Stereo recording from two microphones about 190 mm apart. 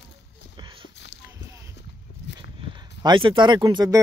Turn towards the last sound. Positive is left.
turn(degrees=-20)  # may be behind; listen again after turning